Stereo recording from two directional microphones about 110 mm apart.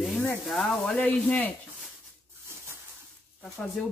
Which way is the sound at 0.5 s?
5° left (ahead or behind).